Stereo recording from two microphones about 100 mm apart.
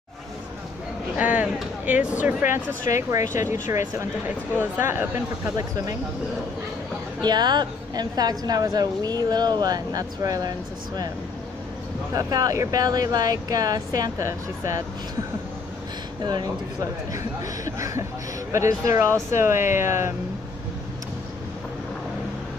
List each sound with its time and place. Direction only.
1.1 s speech: 15° right (ahead or behind)
7.2 s a woman's voice: 45° right (ahead or behind)
12.1 s a woman's voice: 35° right (ahead or behind)
17.7 s a woman's voice: 30° right (ahead or behind)